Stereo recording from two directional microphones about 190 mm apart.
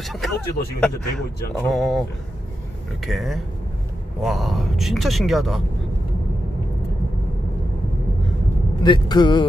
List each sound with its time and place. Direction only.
0.0 s a man's voice: centre (ahead or behind)
3.1 s a man's voice: centre (ahead or behind)
8.8 s a man's voice: 25° left (ahead or behind)